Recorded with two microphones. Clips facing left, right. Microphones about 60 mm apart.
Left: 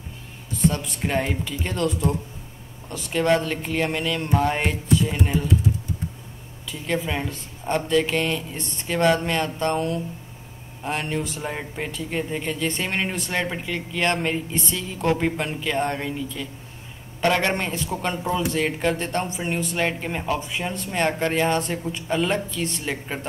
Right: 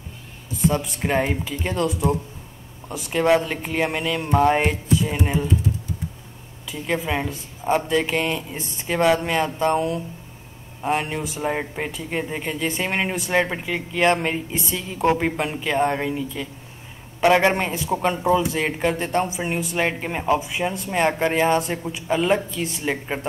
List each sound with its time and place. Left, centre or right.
0.6 s speech: centre
6.7 s speech: centre
11.5 s a woman's voice: right